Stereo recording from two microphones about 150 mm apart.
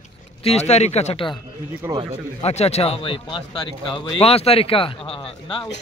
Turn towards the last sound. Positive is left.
turn(degrees=35)  # may be behind; listen again after turning